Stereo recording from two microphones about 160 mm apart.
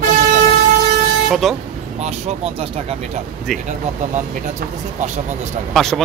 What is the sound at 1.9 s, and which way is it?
Speech, 40° right (ahead or behind).